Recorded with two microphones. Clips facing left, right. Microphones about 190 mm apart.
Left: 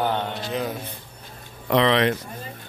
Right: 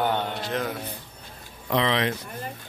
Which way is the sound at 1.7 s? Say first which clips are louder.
Left 5 dB; 65° left (ahead or behind).